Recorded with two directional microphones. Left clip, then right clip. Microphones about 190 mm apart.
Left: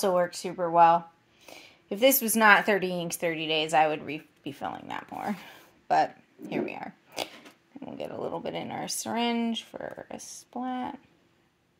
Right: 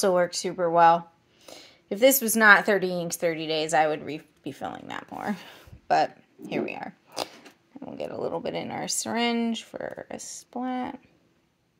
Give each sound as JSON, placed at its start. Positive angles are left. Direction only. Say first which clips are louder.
{"t": 0.0, "sound": "speech", "louder": "right 3 dB", "side_deg": -25}